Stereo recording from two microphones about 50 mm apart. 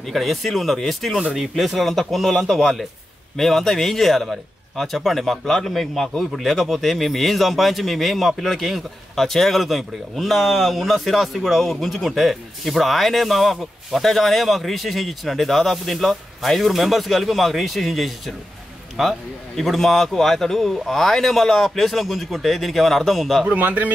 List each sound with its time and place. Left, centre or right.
0.0 s a man's voice: centre
23.4 s a man's voice: right